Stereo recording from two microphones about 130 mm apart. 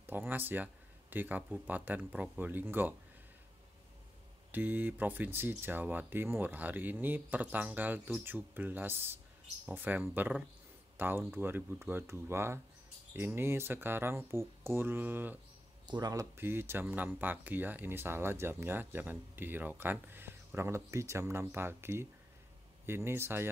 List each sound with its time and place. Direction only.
0.0 s speech: 15° right (ahead or behind)
4.5 s speech: 15° right (ahead or behind)
15.9 s speech: 30° right (ahead or behind)
16.3 s speech: 20° right (ahead or behind)